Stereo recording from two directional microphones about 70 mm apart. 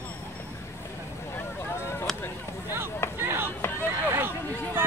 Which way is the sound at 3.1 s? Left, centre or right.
Right.